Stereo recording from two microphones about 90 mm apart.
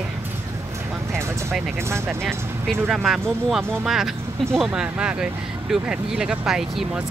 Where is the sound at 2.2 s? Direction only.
Centre (ahead or behind).